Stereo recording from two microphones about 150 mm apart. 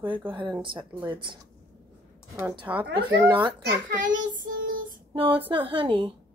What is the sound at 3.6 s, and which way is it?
Child singing, 65° right (ahead or behind).